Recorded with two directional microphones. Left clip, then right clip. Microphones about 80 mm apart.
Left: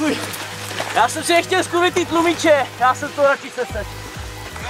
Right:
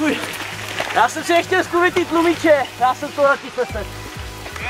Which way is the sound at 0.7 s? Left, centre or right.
Centre.